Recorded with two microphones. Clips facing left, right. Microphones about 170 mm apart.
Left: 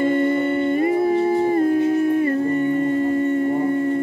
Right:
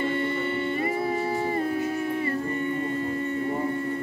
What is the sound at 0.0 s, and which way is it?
Humming, 45° left (ahead or behind).